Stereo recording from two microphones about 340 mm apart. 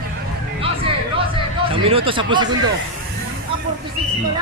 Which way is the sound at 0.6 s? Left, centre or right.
Centre.